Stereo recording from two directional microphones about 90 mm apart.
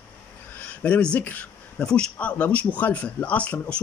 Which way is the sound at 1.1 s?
15° left (ahead or behind).